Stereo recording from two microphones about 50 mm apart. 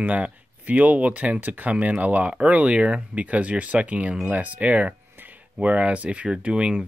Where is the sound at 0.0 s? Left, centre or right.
Right.